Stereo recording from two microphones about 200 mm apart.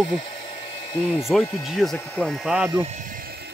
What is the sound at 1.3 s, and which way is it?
Speech, centre (ahead or behind).